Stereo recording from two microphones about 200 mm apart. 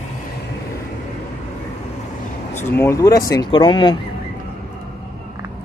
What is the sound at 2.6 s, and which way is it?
Speech, 10° left (ahead or behind).